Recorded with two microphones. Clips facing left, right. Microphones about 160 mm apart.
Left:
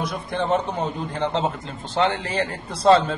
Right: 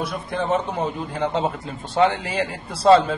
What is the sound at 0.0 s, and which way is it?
A man's voice, centre (ahead or behind).